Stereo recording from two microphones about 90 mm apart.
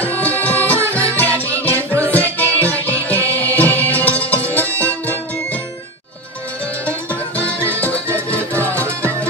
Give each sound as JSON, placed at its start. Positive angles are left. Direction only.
{"t": 0.0, "sound": "music", "side_deg": 20}
{"t": 7.1, "sound": "music", "side_deg": 15}